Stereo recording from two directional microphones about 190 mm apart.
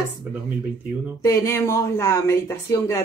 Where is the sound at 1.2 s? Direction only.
15° left (ahead or behind).